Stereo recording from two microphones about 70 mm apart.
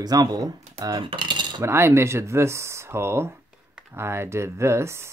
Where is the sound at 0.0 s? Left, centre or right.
Right.